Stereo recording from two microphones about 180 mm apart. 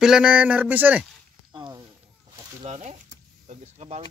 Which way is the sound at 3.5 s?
40° right (ahead or behind).